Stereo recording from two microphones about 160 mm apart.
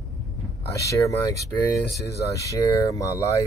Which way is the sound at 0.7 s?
20° left (ahead or behind).